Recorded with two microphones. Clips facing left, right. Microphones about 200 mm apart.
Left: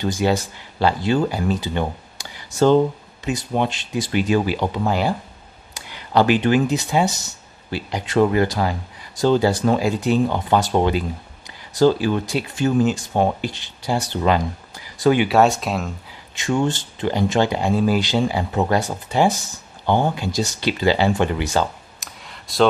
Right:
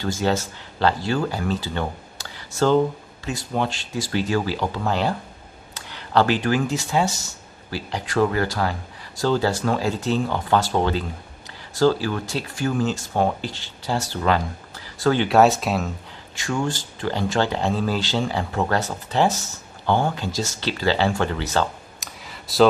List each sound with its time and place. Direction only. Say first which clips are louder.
0.0 s speech: left 3 dB; 15° left (ahead or behind)
15.2 s speech: even; centre (ahead or behind)
16.3 s speech: left 4 dB; 20° left (ahead or behind)
22.0 s clicking: even; centre (ahead or behind)